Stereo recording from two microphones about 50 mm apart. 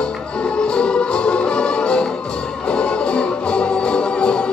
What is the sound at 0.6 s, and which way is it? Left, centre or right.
Music, centre.